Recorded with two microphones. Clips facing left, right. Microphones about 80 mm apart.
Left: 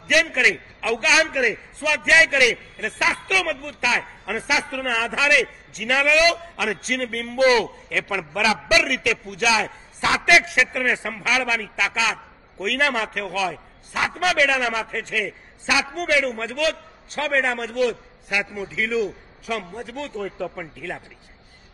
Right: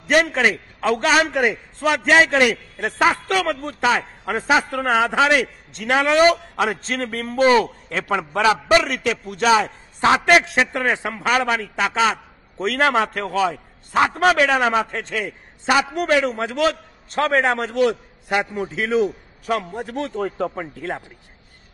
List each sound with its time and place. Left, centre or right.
0.1 s a man's voice: right